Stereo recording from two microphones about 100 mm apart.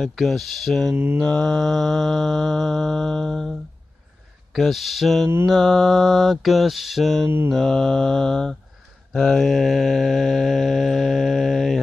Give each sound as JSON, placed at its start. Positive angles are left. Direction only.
{"t": 0.0, "sound": "mantra", "side_deg": 0}
{"t": 0.9, "sound": "mantra", "side_deg": -20}
{"t": 1.2, "sound": "mantra", "side_deg": 10}